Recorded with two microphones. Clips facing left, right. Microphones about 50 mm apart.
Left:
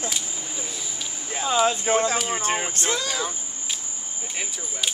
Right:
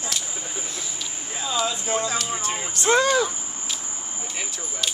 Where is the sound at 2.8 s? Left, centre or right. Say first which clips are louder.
Right 14 dB; right.